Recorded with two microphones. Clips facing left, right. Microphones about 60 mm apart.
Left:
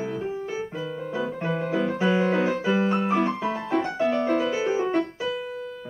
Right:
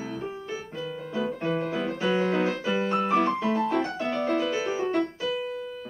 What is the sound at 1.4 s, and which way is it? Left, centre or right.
Music, centre.